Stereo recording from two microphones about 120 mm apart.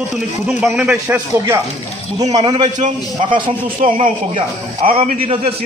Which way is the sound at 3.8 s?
90° right.